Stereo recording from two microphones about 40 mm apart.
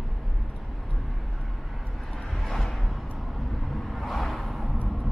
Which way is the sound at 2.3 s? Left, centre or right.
Centre.